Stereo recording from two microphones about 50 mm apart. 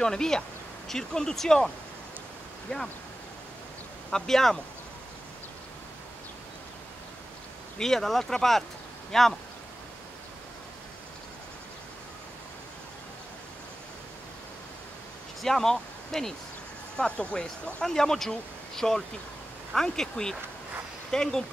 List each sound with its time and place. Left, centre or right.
0.0 s speech: centre
2.7 s speech: centre
4.1 s speech: centre
7.8 s speech: centre
15.4 s speech: centre
16.9 s speech: centre